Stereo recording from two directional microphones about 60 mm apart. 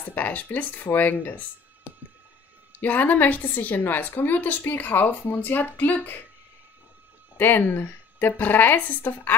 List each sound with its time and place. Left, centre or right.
0.0 s a woman's voice: left
7.3 s a woman's voice: left